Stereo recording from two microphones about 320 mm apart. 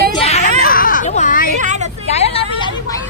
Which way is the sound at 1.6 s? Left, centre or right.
Right.